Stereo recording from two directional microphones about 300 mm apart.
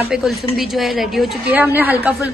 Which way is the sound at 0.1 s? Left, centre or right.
Centre.